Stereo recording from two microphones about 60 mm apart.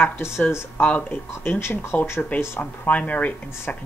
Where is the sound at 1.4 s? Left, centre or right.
Left.